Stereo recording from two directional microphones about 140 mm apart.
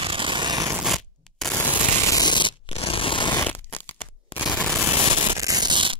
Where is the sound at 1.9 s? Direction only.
25° left (ahead or behind).